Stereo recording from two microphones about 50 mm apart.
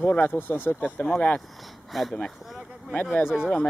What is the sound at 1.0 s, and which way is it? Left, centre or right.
Speech, left.